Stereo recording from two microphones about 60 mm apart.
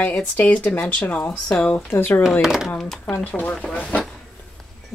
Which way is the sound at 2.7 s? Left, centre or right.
Centre.